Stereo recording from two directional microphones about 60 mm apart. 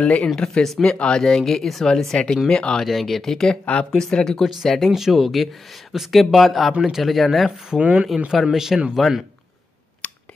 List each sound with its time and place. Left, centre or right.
0.0 s speech: left
0.4 s speech: centre
1.2 s speech: centre
2.8 s speech: centre
7.8 s speech: centre
8.3 s speech: centre